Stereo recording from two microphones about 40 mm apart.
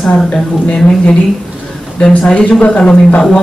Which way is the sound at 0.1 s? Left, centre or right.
Left.